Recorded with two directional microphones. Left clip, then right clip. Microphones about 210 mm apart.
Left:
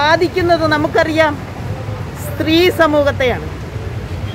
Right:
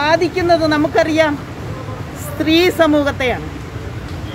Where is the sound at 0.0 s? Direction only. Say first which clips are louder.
Left 2 dB; 5° left (ahead or behind).